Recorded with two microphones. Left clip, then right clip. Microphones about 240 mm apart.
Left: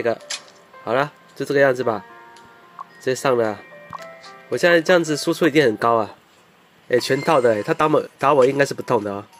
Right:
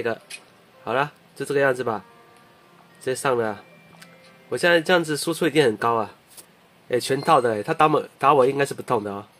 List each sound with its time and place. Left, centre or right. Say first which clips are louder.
0.0 s speech: left 5 dB; centre
3.0 s music: left 4 dB; centre
4.5 s speech: left 3 dB; centre